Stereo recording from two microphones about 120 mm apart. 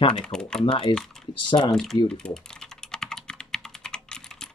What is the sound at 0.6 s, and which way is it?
Speech, 45° left (ahead or behind).